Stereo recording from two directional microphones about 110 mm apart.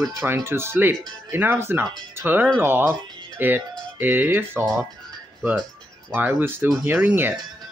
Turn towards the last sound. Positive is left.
turn(degrees=-15)  # may be behind; listen again after turning